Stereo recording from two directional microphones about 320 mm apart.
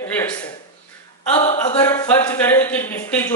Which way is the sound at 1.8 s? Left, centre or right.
Centre.